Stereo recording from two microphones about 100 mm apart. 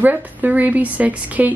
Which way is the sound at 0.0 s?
15° right (ahead or behind).